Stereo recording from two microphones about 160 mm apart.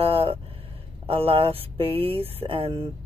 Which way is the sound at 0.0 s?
35° right (ahead or behind).